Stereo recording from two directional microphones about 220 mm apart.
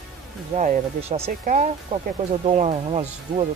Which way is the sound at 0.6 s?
30° right (ahead or behind).